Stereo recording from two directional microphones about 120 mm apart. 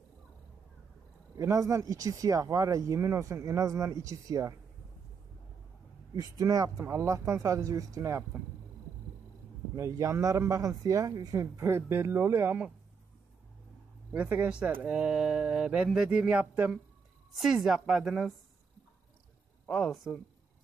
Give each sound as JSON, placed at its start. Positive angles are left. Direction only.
{"t": 1.3, "sound": "speech", "side_deg": -30}
{"t": 6.1, "sound": "speech", "side_deg": -30}
{"t": 9.8, "sound": "speech", "side_deg": -25}
{"t": 14.1, "sound": "a woman's voice", "side_deg": -15}
{"t": 19.7, "sound": "a woman's voice", "side_deg": 0}